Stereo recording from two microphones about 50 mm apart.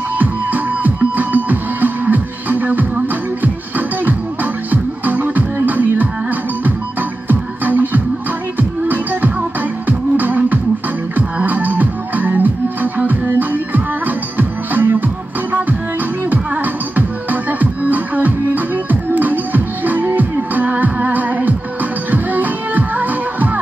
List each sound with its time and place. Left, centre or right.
0.2 s music: right
4.6 s music: right
16.9 s music: right